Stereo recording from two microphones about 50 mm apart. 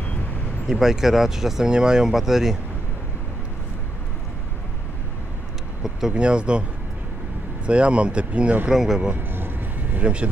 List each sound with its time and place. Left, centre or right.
0.7 s speech: centre
6.1 s speech: right
7.6 s speech: right
8.6 s speech: centre
9.1 s vehicle: right
9.9 s speech: right